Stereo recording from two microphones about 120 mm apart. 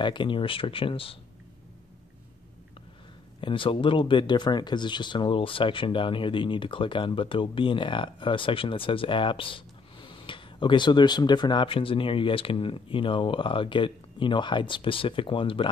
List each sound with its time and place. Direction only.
0.0 s speech: 40° left (ahead or behind)
3.3 s speech: 45° left (ahead or behind)